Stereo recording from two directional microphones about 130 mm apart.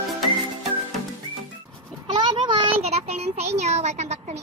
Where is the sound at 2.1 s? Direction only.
35° right (ahead or behind).